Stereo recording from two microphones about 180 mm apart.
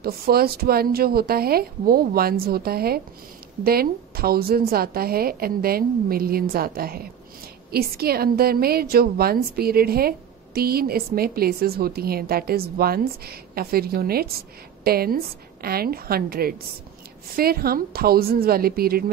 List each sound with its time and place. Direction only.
0.0 s a woman's voice: 60° right (ahead or behind)